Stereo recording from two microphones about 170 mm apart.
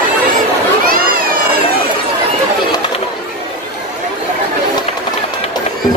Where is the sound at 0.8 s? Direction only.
55° right (ahead or behind).